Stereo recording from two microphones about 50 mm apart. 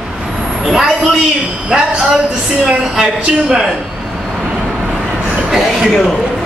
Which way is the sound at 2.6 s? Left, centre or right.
Centre.